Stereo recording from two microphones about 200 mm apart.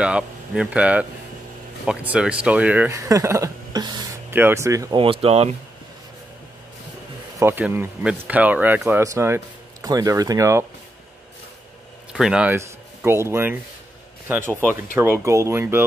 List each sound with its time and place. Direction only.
0.0 s speech: 5° right (ahead or behind)
4.9 s speech: 25° right (ahead or behind)
7.3 s speech: 10° right (ahead or behind)
12.1 s speech: 5° right (ahead or behind)